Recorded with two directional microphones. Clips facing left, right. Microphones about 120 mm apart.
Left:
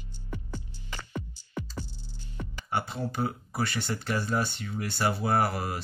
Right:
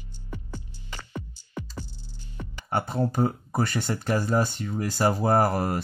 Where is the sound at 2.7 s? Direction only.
50° right (ahead or behind).